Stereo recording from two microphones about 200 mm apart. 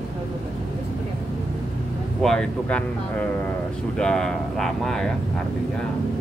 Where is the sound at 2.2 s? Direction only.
5° left (ahead or behind).